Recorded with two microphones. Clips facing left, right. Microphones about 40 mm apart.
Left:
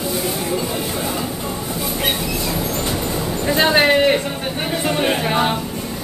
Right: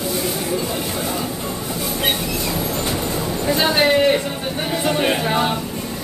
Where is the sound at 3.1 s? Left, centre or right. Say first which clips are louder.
Even; centre.